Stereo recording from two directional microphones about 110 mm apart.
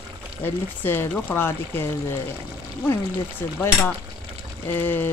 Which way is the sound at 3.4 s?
20° left (ahead or behind).